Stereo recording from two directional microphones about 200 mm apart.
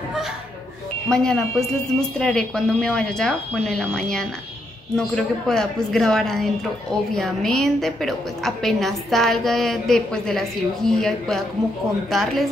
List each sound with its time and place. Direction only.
1.0 s a woman's voice: 5° left (ahead or behind)